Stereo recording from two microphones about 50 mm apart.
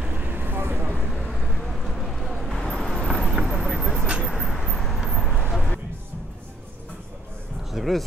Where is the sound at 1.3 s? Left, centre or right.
Centre.